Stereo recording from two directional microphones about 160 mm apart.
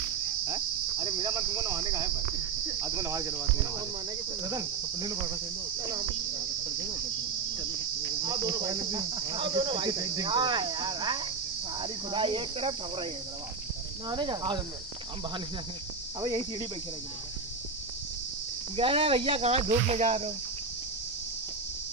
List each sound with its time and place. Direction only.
0.5 s speech: 25° right (ahead or behind)
8.0 s speech: 25° right (ahead or behind)
16.2 s speech: 25° right (ahead or behind)
18.8 s speech: 35° right (ahead or behind)